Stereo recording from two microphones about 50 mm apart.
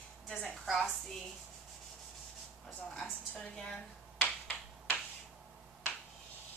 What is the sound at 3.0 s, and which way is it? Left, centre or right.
Speech, centre.